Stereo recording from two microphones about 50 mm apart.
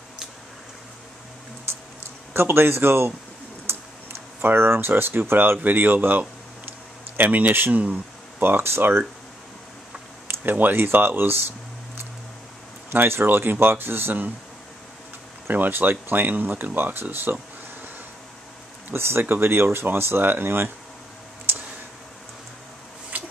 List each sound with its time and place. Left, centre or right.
2.3 s speech: right
10.2 s speech: right
12.9 s speech: right
15.4 s speech: right
18.9 s speech: right
21.5 s clicking: right
23.1 s a sound: right